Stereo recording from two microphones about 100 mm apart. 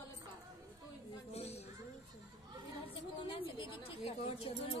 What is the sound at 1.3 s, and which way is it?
Speech, 90° left.